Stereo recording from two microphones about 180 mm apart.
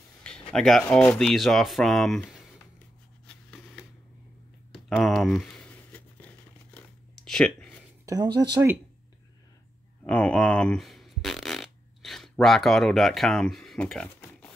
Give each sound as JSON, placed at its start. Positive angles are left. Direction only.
{"t": 0.2, "sound": "speech", "side_deg": 5}
{"t": 3.3, "sound": "a sound", "side_deg": 5}
{"t": 8.0, "sound": "speech", "side_deg": -20}
{"t": 10.0, "sound": "fart", "side_deg": 5}